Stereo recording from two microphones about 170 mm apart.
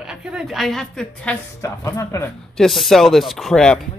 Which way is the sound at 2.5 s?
Centre (ahead or behind).